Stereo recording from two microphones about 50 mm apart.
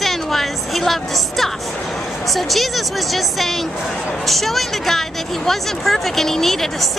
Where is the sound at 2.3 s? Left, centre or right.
Centre.